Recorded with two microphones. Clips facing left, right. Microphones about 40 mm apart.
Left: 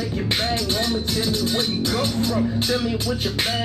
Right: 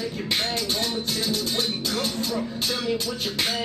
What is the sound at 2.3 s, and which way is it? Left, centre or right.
Speech, centre.